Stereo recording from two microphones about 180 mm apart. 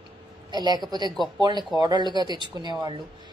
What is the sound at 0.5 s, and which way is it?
Speech, 20° right (ahead or behind).